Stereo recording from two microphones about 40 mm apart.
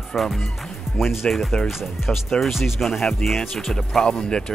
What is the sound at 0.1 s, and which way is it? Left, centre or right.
Speech, centre.